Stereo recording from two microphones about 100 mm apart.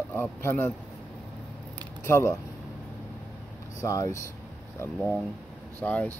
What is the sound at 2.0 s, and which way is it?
Speech, 25° left (ahead or behind).